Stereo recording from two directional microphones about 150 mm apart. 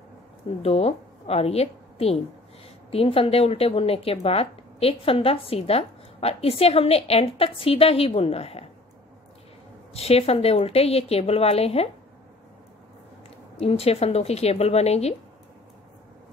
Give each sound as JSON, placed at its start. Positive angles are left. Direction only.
{"t": 0.6, "sound": "a woman's voice", "side_deg": 45}
{"t": 9.9, "sound": "a woman's voice", "side_deg": 40}
{"t": 13.6, "sound": "a woman's voice", "side_deg": 45}